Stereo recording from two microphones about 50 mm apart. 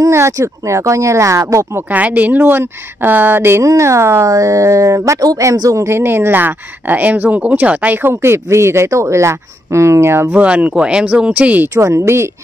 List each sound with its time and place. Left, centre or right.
0.1 s speech: right
1.9 s speech: right
2.4 s speech: right
3.6 s speech: right
5.9 s speech: right
7.9 s speech: right
10.3 s speech: right
11.7 s speech: right